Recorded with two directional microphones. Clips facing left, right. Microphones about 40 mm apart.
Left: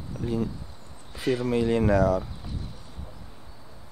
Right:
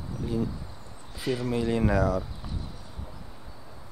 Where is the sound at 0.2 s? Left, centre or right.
Centre.